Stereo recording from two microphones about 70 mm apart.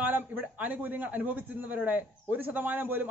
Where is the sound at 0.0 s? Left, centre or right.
Right.